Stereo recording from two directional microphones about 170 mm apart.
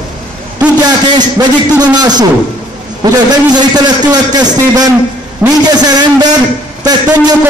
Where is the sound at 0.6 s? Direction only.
10° right (ahead or behind).